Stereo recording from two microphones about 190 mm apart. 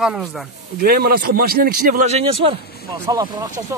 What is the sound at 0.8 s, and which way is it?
Speech, 50° right (ahead or behind).